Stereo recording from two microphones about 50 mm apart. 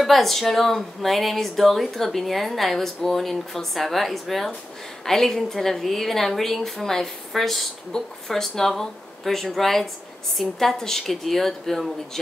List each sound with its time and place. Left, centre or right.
0.0 s a woman's voice: centre